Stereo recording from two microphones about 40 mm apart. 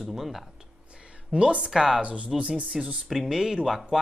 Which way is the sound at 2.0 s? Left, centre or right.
Right.